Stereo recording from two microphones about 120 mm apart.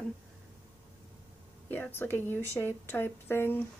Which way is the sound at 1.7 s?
15° left (ahead or behind).